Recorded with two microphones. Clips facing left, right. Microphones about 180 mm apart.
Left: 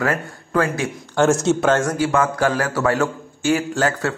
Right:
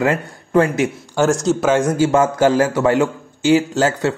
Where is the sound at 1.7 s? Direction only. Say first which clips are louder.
Right 4 dB; 25° right (ahead or behind).